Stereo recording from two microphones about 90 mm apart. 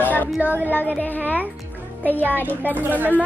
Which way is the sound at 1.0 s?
20° left (ahead or behind).